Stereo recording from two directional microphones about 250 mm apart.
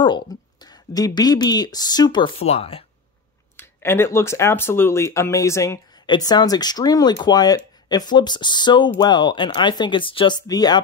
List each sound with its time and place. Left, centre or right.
0.0 s speech: centre
3.5 s speech: centre